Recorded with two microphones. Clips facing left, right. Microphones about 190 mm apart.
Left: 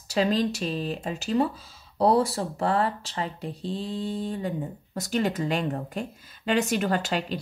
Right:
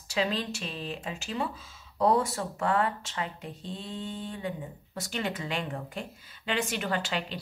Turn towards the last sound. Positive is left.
turn(degrees=40)  # may be behind; listen again after turning